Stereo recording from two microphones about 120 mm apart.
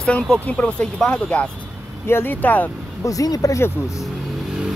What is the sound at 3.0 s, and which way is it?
Speech, 30° left (ahead or behind).